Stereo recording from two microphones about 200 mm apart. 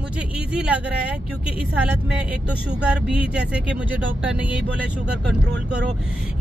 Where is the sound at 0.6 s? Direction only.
5° right (ahead or behind).